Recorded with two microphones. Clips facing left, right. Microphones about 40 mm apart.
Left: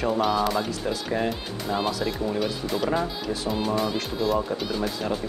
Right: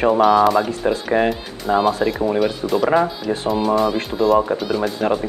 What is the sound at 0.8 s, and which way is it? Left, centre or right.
Speech, right.